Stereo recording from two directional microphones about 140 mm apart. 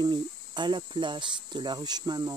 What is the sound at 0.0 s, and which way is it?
Speech, 30° right (ahead or behind).